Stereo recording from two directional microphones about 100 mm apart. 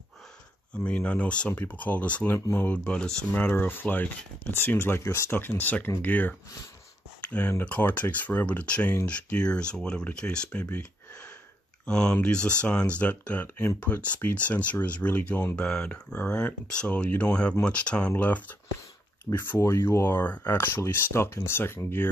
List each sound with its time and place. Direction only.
0.8 s speech: 10° left (ahead or behind)
3.4 s speech: 20° left (ahead or behind)